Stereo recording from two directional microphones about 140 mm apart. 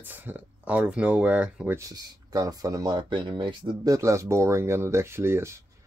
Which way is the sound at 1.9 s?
25° right (ahead or behind).